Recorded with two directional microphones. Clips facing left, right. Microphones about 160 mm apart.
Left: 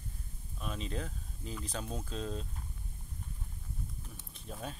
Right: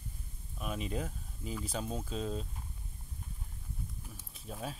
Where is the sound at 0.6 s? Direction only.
10° right (ahead or behind).